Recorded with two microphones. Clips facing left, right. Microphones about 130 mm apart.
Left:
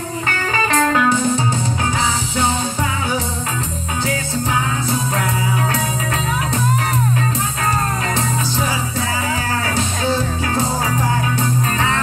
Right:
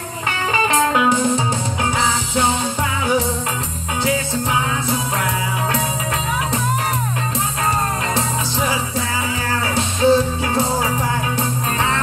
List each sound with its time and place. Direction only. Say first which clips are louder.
0.7 s music: left 1 dB; 15° right (ahead or behind)
9.8 s music: right 9 dB; 25° right (ahead or behind)